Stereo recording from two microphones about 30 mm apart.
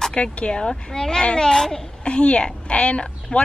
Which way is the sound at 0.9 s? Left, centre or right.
Left.